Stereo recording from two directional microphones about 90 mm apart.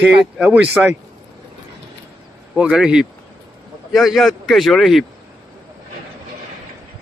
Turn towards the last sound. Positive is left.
turn(degrees=0)  # may be behind; listen again after turning